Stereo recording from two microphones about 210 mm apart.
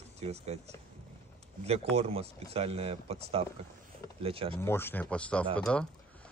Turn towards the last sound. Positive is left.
turn(degrees=5)  # may be behind; listen again after turning